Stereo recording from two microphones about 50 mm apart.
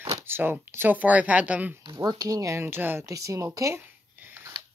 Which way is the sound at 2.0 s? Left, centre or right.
Right.